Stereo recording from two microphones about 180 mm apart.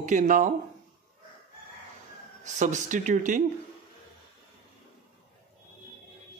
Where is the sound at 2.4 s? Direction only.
45° right (ahead or behind).